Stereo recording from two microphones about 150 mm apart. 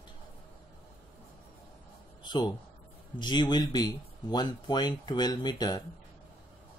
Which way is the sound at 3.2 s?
30° left (ahead or behind).